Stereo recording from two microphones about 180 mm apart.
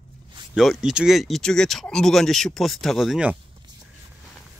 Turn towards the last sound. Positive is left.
turn(degrees=-5)  # may be behind; listen again after turning